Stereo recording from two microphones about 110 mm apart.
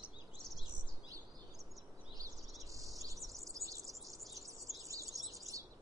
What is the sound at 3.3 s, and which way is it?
Bird, 30° right (ahead or behind).